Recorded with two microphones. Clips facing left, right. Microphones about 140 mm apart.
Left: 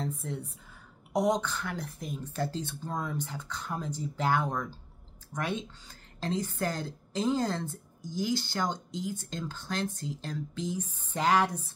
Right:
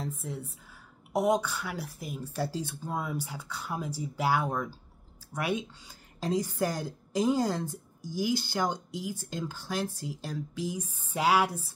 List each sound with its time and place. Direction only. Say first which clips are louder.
0.0 s a woman's voice: left 1 dB; centre (ahead or behind)